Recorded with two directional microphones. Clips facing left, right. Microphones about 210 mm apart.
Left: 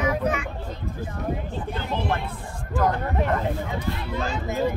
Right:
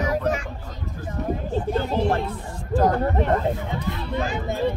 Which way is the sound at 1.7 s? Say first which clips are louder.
Right 5 dB; 40° right (ahead or behind).